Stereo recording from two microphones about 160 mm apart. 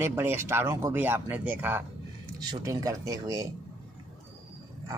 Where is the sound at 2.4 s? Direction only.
25° right (ahead or behind).